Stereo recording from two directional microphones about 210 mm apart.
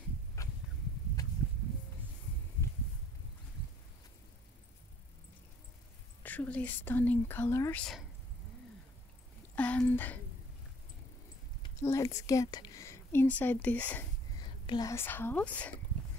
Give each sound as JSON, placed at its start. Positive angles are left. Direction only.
{"t": 0.4, "sound": "a sound", "side_deg": 15}
{"t": 6.2, "sound": "speech", "side_deg": 10}
{"t": 9.6, "sound": "speech", "side_deg": 5}
{"t": 11.8, "sound": "speech", "side_deg": 15}
{"t": 14.4, "sound": "speech", "side_deg": 20}